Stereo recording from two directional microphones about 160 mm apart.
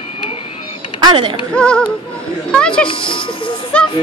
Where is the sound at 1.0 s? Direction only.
30° right (ahead or behind).